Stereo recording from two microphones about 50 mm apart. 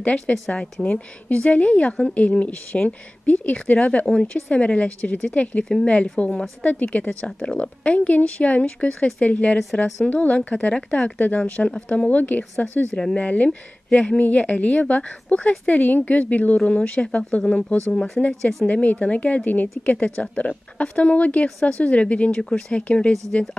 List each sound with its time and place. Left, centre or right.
0.6 s a woman's voice: centre
12.9 s speech: centre
13.2 s a woman's voice: left; by 18.7 s centre
18.7 s a woman's voice: left